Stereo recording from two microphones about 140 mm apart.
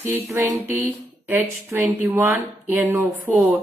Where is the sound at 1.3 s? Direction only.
15° right (ahead or behind).